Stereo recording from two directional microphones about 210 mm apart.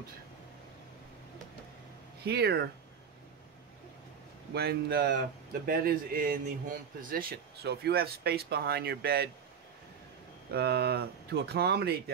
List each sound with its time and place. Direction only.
2.2 s speech: 50° right (ahead or behind)
4.6 s speech: 45° right (ahead or behind)
10.5 s speech: 50° right (ahead or behind)